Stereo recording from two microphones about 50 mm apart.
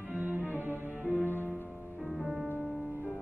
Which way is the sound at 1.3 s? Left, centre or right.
Left.